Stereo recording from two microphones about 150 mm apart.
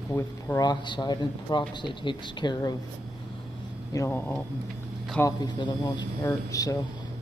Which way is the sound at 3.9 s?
15° left (ahead or behind).